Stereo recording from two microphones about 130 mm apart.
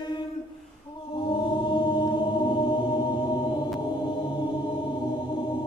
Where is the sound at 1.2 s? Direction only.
35° left (ahead or behind).